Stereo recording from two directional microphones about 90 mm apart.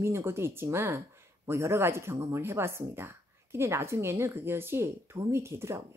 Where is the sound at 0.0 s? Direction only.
30° right (ahead or behind).